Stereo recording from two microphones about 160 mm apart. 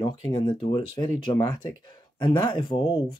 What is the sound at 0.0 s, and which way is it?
Speech, 35° left (ahead or behind).